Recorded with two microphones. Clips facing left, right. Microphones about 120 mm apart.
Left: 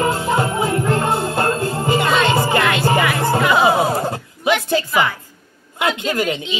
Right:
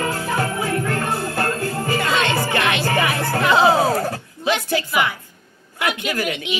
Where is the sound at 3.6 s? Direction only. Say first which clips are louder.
Even; 20° left (ahead or behind).